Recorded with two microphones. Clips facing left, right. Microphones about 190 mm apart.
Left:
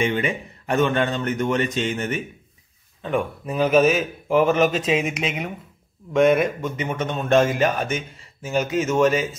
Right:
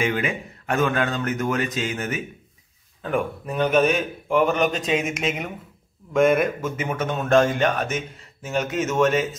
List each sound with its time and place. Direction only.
0.0 s speech: centre (ahead or behind)